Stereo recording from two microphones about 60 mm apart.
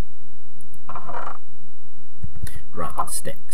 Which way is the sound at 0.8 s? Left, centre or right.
Centre.